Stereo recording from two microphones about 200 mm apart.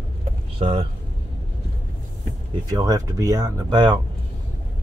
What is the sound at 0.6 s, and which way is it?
Speech, 30° right (ahead or behind).